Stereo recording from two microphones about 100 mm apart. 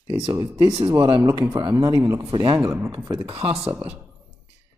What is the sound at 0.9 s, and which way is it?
Speech, 55° right (ahead or behind).